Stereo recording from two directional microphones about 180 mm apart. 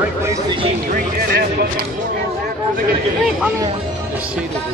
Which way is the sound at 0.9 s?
55° right (ahead or behind).